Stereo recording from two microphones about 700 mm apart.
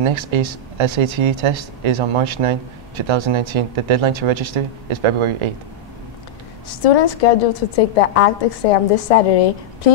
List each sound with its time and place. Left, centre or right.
0.0 s speech: right
6.8 s a woman's voice: left